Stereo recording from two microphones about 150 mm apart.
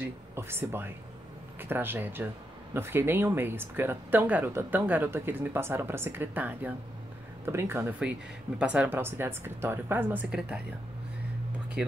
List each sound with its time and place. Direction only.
0.0 s speech: 15° right (ahead or behind)